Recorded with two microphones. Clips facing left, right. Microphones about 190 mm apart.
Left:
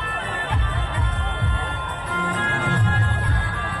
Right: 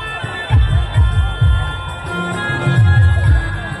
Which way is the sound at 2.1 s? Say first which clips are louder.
Right 5 dB; 80° right.